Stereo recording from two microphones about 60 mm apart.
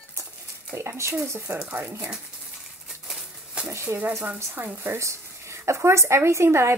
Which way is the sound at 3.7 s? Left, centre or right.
Right.